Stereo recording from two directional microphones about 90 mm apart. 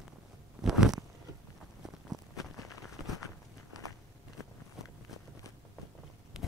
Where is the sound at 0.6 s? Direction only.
5° right (ahead or behind).